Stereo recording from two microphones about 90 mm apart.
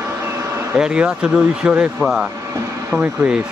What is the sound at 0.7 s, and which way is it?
A man's voice, 5° right (ahead or behind).